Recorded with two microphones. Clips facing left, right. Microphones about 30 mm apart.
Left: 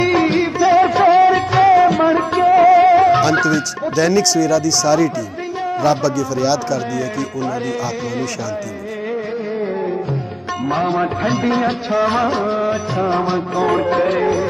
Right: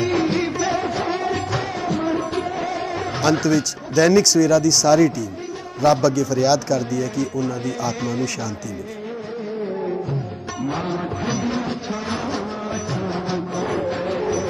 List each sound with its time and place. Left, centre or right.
0.0 s music: left
3.2 s speech: centre
10.7 s music: left
12.9 s music: left